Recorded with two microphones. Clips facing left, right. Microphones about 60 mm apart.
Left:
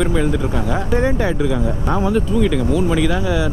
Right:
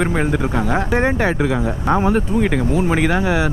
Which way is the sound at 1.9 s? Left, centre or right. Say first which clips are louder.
Right 2 dB; right.